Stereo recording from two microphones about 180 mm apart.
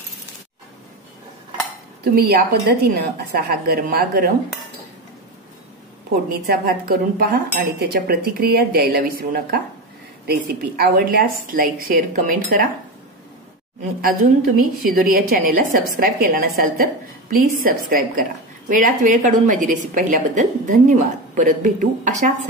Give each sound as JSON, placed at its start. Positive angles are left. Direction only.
{"t": 2.0, "sound": "speech", "side_deg": -60}
{"t": 6.2, "sound": "a woman's voice", "side_deg": -55}
{"t": 14.0, "sound": "a woman's voice", "side_deg": -55}